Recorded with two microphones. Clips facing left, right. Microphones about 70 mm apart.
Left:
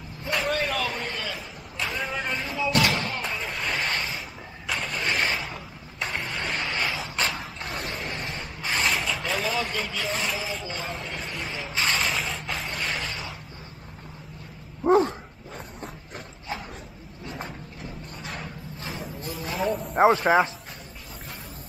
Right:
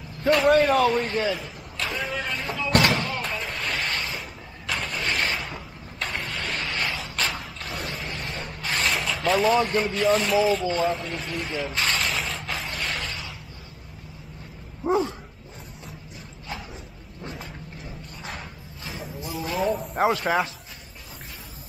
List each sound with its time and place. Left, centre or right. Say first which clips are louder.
0.5 s speech: right 10 dB; right
1.8 s speech: right 1 dB; centre
2.9 s slam: right 2 dB; centre
4.6 s vehicle: even; centre
7.0 s a sound: left 1 dB; centre
14.9 s dog: left 4 dB; left
18.9 s a sound: right 1 dB; centre
20.0 s a man's voice: left 5 dB; left